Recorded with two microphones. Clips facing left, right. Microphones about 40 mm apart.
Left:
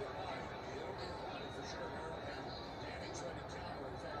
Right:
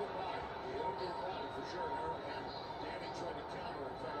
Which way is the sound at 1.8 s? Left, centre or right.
Right.